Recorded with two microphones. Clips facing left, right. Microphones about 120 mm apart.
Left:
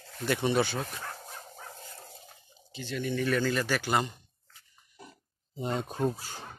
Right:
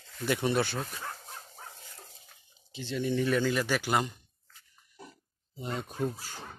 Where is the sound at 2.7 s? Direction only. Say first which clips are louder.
Right 2 dB; 25° right (ahead or behind).